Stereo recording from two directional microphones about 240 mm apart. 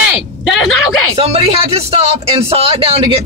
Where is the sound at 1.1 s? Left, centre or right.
Right.